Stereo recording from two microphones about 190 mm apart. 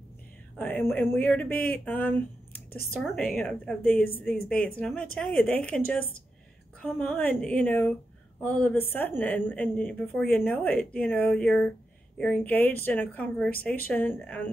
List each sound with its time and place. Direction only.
0.6 s a woman's voice: 10° left (ahead or behind)
6.8 s a woman's voice: 5° left (ahead or behind)